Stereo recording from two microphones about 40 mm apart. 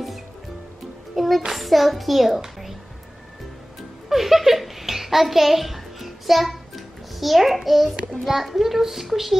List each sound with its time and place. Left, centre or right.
1.1 s music: centre
1.5 s a child's voice: centre
4.1 s a child's voice: centre
7.9 s child singing: right
8.3 s a child's voice: centre